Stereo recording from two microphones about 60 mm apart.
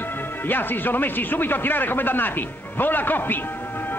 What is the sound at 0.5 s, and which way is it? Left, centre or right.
A man's voice, left.